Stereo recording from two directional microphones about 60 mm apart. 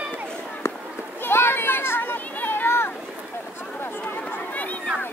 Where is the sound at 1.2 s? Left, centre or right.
Left.